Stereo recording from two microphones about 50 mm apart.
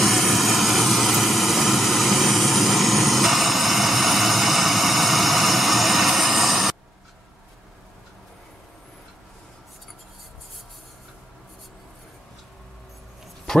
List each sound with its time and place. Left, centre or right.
0.0 s vehicle: centre